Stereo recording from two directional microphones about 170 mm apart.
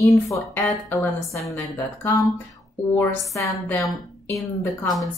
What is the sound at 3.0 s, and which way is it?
Speech, 15° left (ahead or behind).